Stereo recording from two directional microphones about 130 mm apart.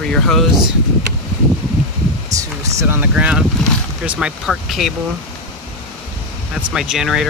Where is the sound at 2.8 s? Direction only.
15° right (ahead or behind).